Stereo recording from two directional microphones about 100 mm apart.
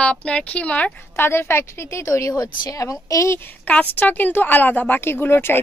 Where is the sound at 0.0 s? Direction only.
10° left (ahead or behind); by 3.3 s 30° left (ahead or behind).